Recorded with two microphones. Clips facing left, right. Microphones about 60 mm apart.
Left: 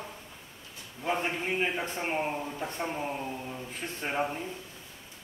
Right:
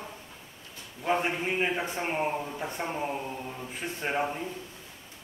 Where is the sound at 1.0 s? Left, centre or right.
Centre.